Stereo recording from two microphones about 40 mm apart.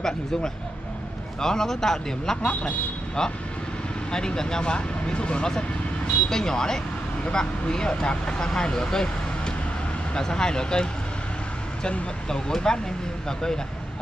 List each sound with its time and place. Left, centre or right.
1.4 s speech: centre
10.1 s speech: centre
12.3 s speech: centre